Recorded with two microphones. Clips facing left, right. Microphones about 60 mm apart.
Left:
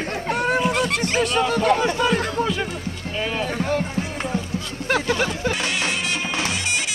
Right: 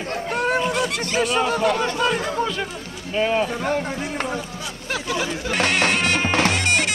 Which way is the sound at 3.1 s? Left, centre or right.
Right.